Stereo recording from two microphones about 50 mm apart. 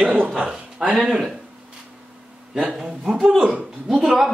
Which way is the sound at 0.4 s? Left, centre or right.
Centre.